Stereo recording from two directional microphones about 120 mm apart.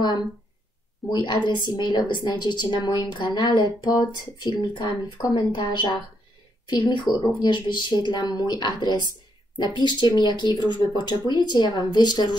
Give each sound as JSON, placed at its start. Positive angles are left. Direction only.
{"t": 0.0, "sound": "a woman's voice", "side_deg": 40}